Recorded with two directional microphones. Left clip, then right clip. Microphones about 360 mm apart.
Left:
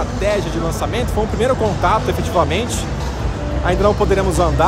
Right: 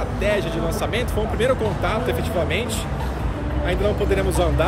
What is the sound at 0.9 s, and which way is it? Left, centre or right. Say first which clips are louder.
Speech: left 4 dB; centre.